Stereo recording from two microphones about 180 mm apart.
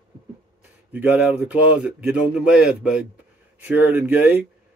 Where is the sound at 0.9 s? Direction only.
10° right (ahead or behind).